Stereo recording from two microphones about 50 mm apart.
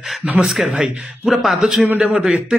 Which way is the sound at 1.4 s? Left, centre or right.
Centre.